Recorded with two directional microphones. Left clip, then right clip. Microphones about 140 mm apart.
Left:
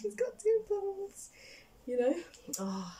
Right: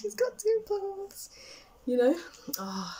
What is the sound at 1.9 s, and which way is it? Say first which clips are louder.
A child's voice: right 5 dB; 15° left (ahead or behind).